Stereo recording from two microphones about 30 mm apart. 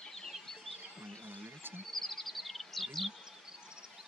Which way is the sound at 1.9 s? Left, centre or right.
Centre.